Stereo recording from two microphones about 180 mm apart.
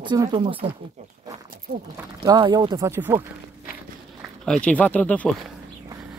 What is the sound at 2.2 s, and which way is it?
Speech, 20° right (ahead or behind).